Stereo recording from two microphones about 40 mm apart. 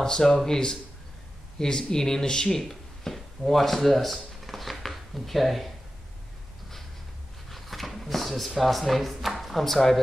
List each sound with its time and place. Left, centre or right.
0.0 s speech: centre
7.4 s drawer open or close: centre